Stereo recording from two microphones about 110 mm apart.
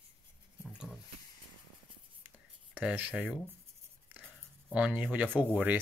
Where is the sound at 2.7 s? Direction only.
15° right (ahead or behind).